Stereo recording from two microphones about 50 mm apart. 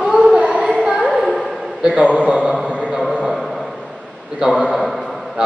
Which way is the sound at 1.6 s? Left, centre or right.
Centre.